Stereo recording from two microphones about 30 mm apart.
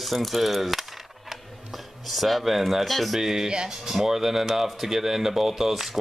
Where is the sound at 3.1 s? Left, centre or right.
Centre.